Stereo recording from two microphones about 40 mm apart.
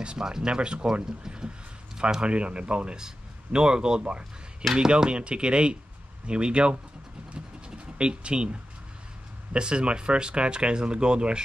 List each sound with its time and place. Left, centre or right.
0.0 s speech: centre
2.2 s speech: right
4.0 s a sound: right
4.7 s speech: right
7.3 s scratch: right
9.5 s speech: right